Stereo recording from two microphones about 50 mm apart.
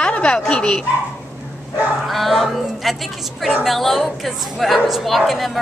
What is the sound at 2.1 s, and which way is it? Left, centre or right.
Speech, centre.